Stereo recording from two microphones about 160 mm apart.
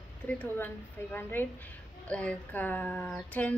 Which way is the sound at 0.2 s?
5° left (ahead or behind).